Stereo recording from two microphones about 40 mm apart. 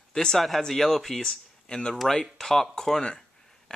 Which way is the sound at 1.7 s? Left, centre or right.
Centre.